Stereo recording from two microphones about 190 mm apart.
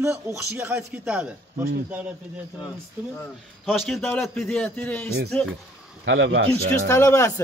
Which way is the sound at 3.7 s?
Centre (ahead or behind).